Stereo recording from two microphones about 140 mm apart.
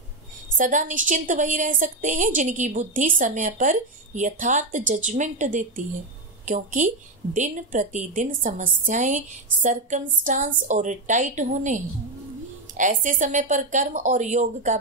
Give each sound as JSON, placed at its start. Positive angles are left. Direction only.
{"t": 0.6, "sound": "a woman's voice", "side_deg": -65}